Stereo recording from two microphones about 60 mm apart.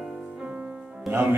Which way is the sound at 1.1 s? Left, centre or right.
Right.